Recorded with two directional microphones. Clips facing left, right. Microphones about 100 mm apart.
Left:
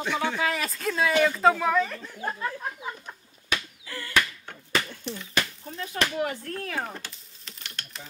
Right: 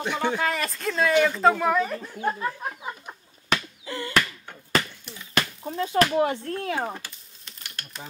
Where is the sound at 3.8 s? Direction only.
25° right (ahead or behind).